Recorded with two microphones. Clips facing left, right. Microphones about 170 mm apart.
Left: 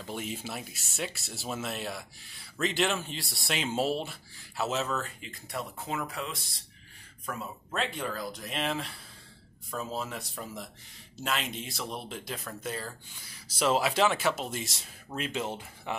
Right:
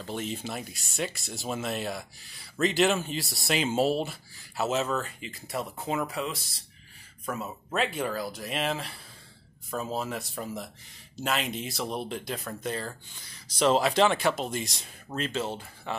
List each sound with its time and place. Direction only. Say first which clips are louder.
0.0 s speech: right 3 dB; 10° left (ahead or behind)
7.7 s speech: right 4 dB; 5° right (ahead or behind)
9.9 s speech: right 4 dB; centre (ahead or behind); by 16.0 s 15° left (ahead or behind)